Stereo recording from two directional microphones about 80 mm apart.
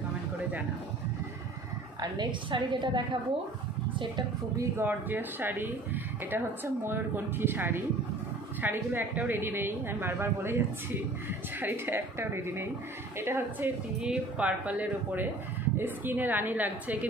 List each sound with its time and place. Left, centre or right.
2.0 s a woman's voice: right
4.6 s speech: right
14.0 s speech: centre